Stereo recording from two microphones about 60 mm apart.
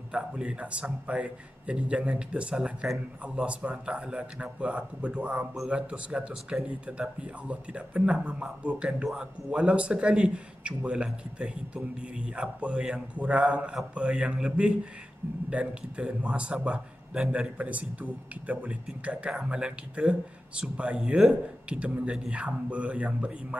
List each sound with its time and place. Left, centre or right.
0.1 s a man's voice: centre
19.3 s a man's voice: centre